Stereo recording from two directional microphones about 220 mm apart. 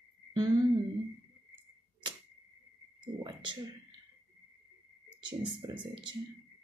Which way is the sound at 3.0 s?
20° right (ahead or behind).